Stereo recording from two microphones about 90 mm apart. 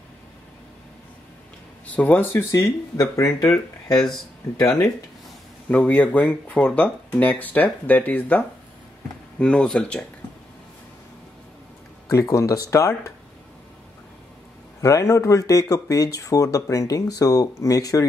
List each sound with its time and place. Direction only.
1.9 s speech: 20° left (ahead or behind)
3.0 s speech: 40° left (ahead or behind)
5.7 s speech: 15° left (ahead or behind)
12.1 s speech: 35° left (ahead or behind)
14.8 s speech: 35° left (ahead or behind)